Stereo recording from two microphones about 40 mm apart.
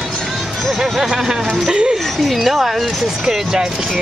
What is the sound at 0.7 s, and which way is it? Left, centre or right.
Speech, centre.